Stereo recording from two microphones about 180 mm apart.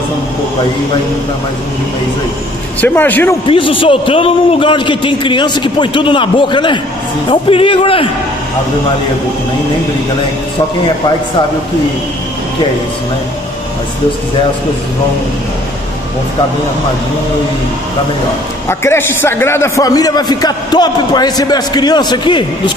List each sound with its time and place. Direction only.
2.8 s speech: 10° left (ahead or behind)
3.4 s a man's voice: 30° left (ahead or behind)
18.7 s a man's voice: 15° left (ahead or behind)